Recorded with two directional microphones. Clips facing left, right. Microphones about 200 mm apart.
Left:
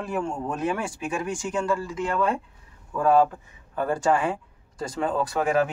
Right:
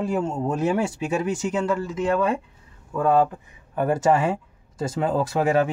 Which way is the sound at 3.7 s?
20° right (ahead or behind).